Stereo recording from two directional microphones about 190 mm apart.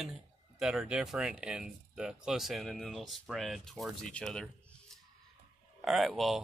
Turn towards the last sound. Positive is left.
turn(degrees=0)  # may be behind; listen again after turning